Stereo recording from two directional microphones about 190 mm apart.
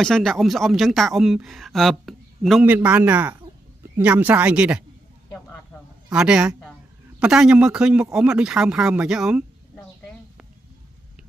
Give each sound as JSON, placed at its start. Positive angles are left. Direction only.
{"t": 0.0, "sound": "speech", "side_deg": 0}
{"t": 6.1, "sound": "speech", "side_deg": -5}